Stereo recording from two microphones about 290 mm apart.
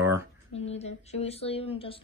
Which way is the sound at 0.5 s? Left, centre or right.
Left.